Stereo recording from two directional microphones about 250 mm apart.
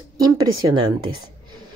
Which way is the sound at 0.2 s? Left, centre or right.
Centre.